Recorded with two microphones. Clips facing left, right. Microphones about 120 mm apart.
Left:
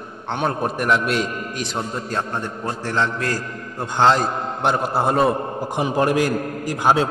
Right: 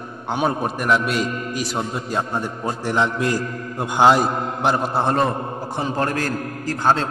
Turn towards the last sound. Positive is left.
turn(degrees=10)  # may be behind; listen again after turning